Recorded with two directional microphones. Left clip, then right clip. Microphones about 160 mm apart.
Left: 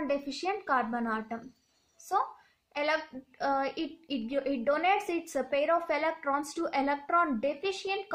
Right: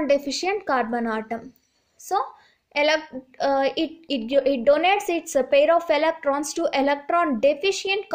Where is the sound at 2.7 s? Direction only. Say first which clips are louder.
Right 9 dB; 30° right (ahead or behind).